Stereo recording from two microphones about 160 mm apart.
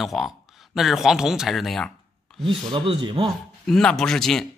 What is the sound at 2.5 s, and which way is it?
Speech, 30° right (ahead or behind).